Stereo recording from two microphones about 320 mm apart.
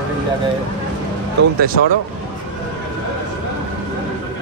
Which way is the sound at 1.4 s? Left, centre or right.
Right.